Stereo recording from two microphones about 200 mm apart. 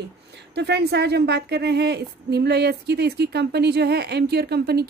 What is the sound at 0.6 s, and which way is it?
A woman's voice, 55° right (ahead or behind).